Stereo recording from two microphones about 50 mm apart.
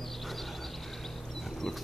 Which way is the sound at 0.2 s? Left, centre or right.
Centre.